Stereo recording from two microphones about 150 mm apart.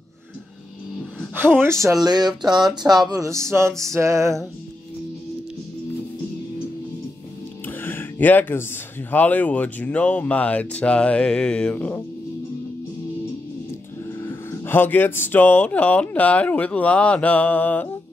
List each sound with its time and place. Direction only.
1.3 s speech: 15° right (ahead or behind)
3.5 s music: 20° right (ahead or behind)
3.9 s speech: 20° right (ahead or behind)
7.6 s music: 15° left (ahead or behind)
9.1 s speech: 10° left (ahead or behind)
14.2 s speech: 15° left (ahead or behind)